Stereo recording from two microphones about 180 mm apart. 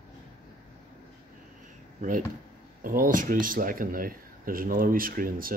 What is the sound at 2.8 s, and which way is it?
Speech, 50° right (ahead or behind).